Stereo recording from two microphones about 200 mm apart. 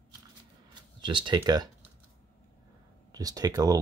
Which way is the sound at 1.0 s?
25° right (ahead or behind).